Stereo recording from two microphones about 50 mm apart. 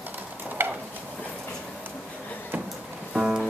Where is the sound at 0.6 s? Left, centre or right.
Right.